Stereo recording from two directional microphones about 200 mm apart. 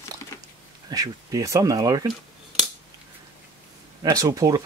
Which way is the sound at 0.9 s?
15° right (ahead or behind).